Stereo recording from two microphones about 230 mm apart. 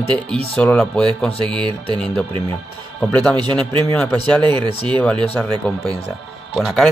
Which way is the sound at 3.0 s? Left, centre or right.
Centre.